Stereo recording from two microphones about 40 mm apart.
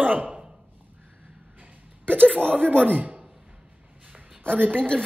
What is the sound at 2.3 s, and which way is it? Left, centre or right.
Speech, right.